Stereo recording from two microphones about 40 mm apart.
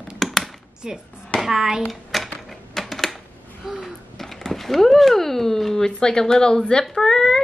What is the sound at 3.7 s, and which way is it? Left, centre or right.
Speech, centre.